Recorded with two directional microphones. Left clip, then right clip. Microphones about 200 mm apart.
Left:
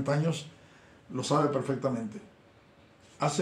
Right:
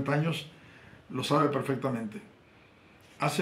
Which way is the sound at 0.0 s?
30° left (ahead or behind).